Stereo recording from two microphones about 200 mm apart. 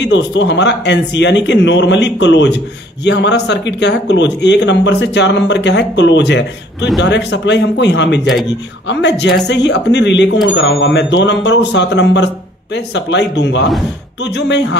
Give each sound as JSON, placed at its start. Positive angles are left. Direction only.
{"t": 0.0, "sound": "a man's voice", "side_deg": 65}